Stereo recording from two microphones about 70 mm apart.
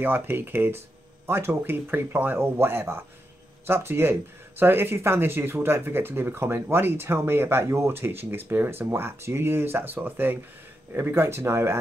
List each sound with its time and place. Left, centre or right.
0.0 s speech: right